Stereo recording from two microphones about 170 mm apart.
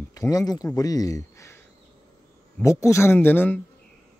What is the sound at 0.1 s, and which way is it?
Speech, 20° left (ahead or behind).